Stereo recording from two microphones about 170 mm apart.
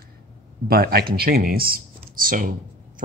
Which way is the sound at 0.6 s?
65° right (ahead or behind).